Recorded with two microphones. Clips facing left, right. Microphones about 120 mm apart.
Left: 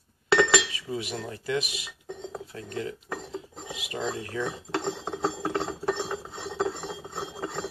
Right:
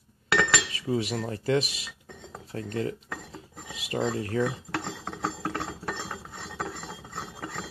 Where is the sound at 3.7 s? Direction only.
35° right (ahead or behind).